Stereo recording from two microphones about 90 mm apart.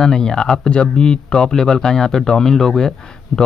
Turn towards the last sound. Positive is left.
turn(degrees=5)  # may be behind; listen again after turning